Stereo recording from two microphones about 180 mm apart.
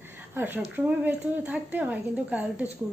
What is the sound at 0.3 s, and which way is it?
A woman's voice, 10° right (ahead or behind).